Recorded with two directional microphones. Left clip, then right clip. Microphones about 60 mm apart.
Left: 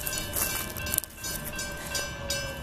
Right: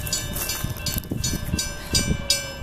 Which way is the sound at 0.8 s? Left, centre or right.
Right.